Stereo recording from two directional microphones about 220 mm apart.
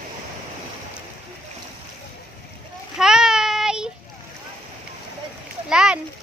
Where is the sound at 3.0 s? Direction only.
Centre (ahead or behind).